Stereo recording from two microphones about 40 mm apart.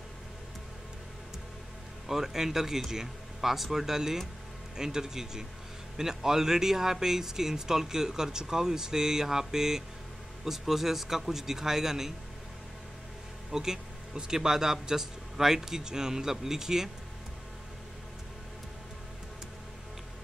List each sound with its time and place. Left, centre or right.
2.0 s speech: centre
13.5 s speech: centre